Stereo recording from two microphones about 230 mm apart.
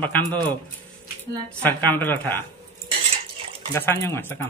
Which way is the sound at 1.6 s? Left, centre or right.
Centre.